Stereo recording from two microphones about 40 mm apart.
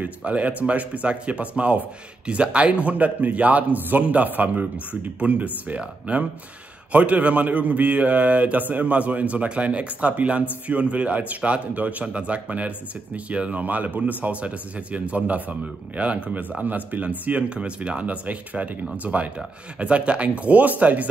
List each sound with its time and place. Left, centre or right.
0.2 s speech: right